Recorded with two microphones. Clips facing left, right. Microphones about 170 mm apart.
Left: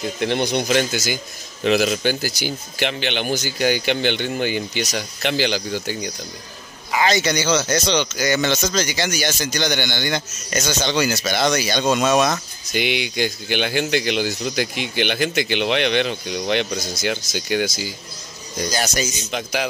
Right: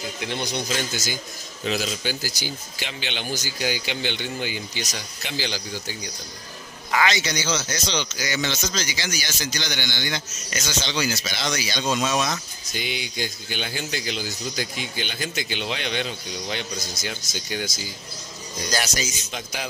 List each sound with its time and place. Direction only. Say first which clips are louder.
0.2 s speech: left 8 dB; 60° left (ahead or behind)
7.1 s speech: left 6 dB; 55° left (ahead or behind); by 17.9 s 75° left (ahead or behind)
18.9 s speech: left 6 dB; 70° left (ahead or behind)